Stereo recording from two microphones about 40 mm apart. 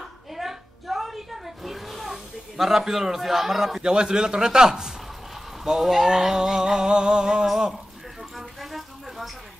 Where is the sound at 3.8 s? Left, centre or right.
Centre.